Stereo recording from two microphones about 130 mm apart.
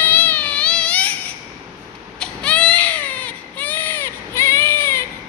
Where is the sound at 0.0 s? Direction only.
15° left (ahead or behind).